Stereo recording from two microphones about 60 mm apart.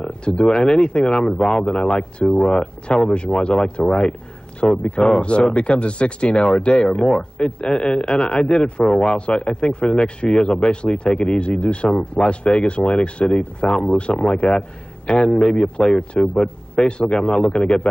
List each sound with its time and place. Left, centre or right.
0.0 s speech: centre